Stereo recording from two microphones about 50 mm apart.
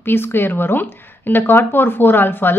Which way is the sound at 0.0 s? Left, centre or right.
Left.